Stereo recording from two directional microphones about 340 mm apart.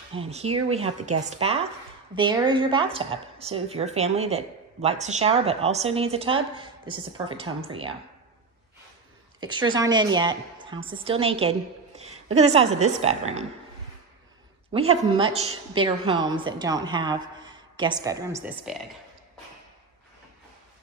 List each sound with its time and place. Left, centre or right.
0.1 s a woman's voice: centre
9.4 s a woman's voice: centre
14.7 s a woman's voice: centre